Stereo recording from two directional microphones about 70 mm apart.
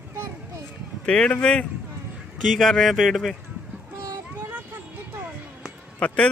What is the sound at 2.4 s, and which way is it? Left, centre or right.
Speech, centre.